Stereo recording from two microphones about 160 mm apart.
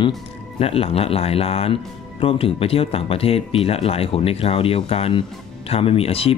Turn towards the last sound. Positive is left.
turn(degrees=35)  # may be behind; listen again after turning